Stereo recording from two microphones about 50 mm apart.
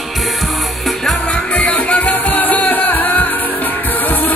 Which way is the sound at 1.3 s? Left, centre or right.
Left.